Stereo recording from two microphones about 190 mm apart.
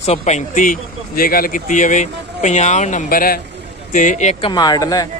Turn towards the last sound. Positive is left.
turn(degrees=20)  # may be behind; listen again after turning